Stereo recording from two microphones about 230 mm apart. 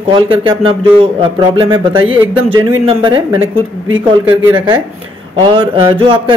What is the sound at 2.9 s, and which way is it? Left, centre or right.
Speech, right.